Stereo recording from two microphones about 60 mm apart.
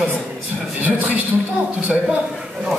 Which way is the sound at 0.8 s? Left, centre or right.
Right.